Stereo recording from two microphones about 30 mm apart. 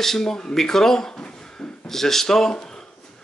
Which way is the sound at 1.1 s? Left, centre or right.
Left.